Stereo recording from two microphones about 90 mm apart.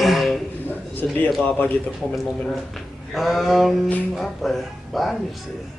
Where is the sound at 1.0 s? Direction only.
15° left (ahead or behind).